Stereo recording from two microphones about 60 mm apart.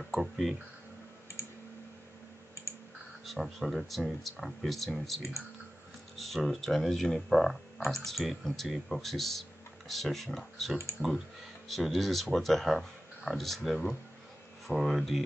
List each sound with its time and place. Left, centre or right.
0.1 s speech: centre
3.3 s speech: centre